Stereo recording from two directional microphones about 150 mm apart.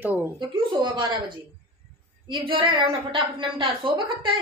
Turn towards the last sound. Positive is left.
turn(degrees=-35)  # may be behind; listen again after turning